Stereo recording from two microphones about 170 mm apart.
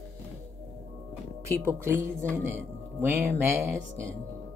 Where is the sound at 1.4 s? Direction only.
15° right (ahead or behind).